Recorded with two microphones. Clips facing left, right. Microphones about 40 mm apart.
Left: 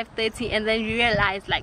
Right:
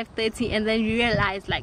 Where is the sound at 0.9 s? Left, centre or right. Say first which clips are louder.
Left 1 dB; centre.